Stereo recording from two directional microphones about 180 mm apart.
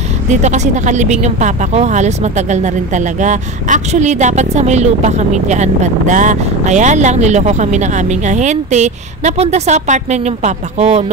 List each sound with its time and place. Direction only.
0.3 s speech: 40° right (ahead or behind)